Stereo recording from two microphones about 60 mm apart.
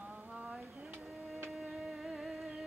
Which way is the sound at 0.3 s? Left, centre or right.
Centre.